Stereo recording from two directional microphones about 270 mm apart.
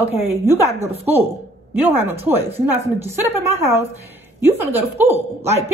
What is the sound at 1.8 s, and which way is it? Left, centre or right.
A woman's voice, centre.